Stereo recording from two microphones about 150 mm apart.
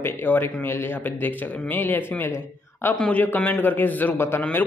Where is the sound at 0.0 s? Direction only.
15° left (ahead or behind).